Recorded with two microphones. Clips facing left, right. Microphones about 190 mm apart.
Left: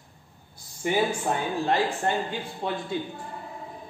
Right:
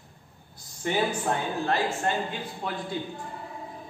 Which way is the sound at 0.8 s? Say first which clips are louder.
Left 2 dB; 10° left (ahead or behind).